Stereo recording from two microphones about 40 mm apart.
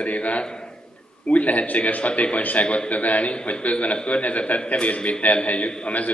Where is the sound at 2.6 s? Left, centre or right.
Left.